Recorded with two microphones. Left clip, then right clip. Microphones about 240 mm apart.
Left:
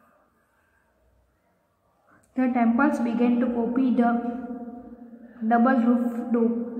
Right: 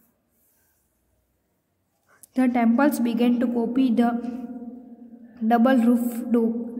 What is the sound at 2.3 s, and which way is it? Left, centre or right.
A woman's voice, right.